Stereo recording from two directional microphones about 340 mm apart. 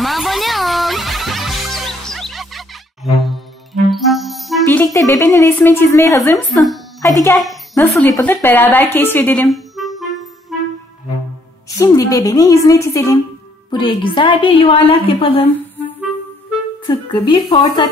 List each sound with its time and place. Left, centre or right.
0.0 s music: centre
4.9 s a woman's voice: centre
11.8 s a woman's voice: centre
16.8 s a woman's voice: centre